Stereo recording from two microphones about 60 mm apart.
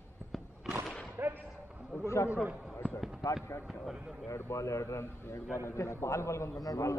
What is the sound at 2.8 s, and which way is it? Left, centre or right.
Basketball bounce, centre.